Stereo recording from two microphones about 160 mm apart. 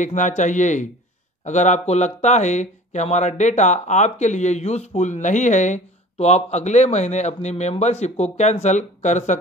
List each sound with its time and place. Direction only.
0.0 s speech: 50° left (ahead or behind)